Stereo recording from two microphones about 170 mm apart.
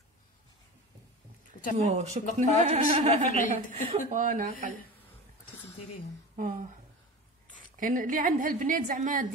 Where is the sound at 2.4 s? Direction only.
45° right (ahead or behind).